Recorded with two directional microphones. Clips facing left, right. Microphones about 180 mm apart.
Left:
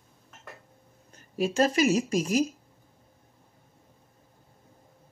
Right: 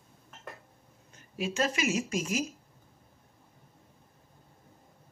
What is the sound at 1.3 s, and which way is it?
A woman's voice, 40° left (ahead or behind).